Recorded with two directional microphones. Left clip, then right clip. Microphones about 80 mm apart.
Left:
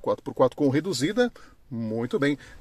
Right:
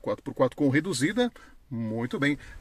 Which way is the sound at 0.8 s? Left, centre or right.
Left.